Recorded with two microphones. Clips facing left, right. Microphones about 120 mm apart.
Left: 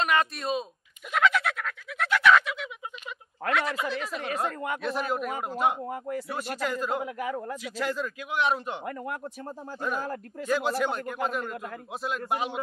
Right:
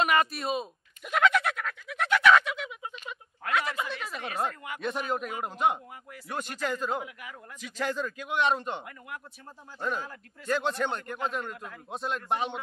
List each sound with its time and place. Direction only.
0.0 s speech: 5° right (ahead or behind)
1.1 s a sound: centre (ahead or behind)
3.5 s a man's voice: centre (ahead or behind)
5.9 s a man's voice: 45° left (ahead or behind)
6.2 s a man's voice: 5° left (ahead or behind)
7.0 s a man's voice: 45° left (ahead or behind)
7.6 s a man's voice: 5° left (ahead or behind)
8.8 s a man's voice: 45° left (ahead or behind)
9.8 s a man's voice: 5° left (ahead or behind)